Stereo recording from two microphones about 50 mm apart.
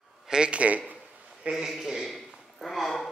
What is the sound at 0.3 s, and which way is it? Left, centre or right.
Speech, right.